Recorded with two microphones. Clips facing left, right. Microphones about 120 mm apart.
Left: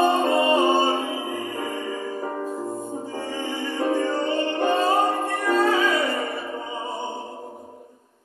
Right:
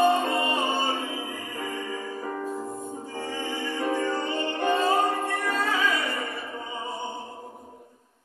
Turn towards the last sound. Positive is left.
turn(degrees=30)  # may be behind; listen again after turning